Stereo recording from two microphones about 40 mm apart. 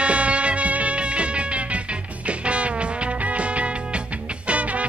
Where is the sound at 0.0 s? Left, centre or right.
Right.